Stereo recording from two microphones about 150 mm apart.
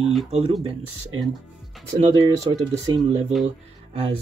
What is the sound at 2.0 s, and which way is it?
Speech, 40° right (ahead or behind).